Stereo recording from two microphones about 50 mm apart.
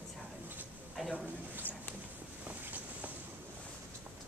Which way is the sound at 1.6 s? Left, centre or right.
Left.